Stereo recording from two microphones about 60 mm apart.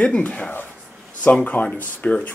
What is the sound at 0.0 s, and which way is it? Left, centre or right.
Speech, left.